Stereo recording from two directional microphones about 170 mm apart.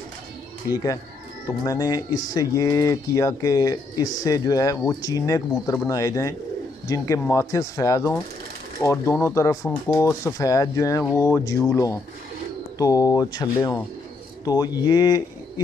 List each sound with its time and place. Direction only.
1.6 s speech: 25° left (ahead or behind)